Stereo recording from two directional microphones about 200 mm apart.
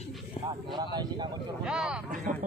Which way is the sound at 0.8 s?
20° right (ahead or behind).